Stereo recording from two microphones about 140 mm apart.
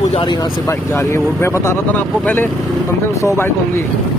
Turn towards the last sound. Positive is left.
turn(degrees=20)  # may be behind; listen again after turning